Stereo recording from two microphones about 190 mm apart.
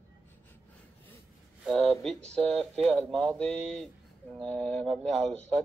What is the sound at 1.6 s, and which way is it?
Speech, centre (ahead or behind).